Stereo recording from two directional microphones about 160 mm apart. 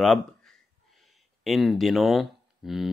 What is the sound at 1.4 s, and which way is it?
Speech, centre (ahead or behind).